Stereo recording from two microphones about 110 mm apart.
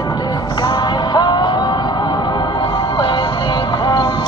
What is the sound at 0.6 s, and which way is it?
Music, 40° left (ahead or behind).